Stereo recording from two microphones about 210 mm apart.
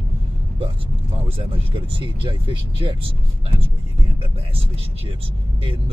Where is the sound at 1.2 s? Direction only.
25° right (ahead or behind).